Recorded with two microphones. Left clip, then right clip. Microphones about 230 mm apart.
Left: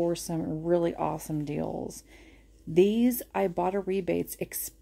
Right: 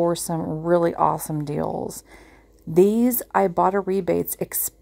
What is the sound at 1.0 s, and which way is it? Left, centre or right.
Speech, centre.